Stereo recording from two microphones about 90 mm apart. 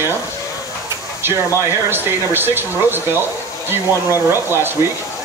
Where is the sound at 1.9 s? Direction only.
25° right (ahead or behind).